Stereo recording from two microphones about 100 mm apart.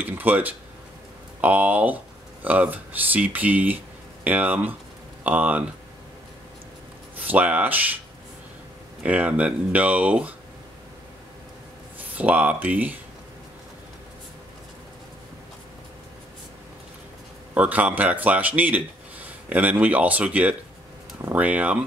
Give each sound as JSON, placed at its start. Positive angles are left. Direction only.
{"t": 0.0, "sound": "speech", "side_deg": -20}
{"t": 7.2, "sound": "speech", "side_deg": -15}
{"t": 9.0, "sound": "speech", "side_deg": -15}
{"t": 12.2, "sound": "speech", "side_deg": -15}
{"t": 17.6, "sound": "speech", "side_deg": -15}